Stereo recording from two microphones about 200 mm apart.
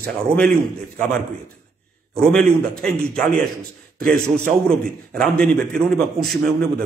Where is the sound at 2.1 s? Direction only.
5° left (ahead or behind).